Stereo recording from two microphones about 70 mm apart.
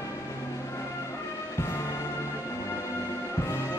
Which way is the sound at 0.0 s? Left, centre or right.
Left.